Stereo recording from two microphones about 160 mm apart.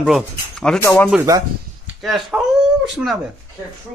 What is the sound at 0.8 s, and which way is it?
Speech, 15° left (ahead or behind).